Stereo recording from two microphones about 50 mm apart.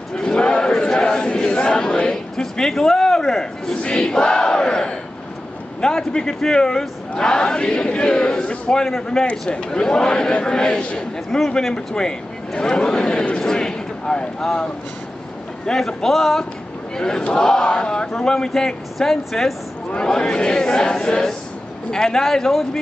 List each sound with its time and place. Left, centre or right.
0.1 s chant: centre
3.8 s battle cry: centre
5.8 s a man's voice: centre
13.4 s a sound: centre
15.6 s a man's voice: centre